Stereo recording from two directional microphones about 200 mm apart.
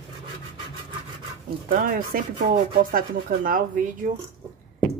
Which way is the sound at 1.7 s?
45° right (ahead or behind).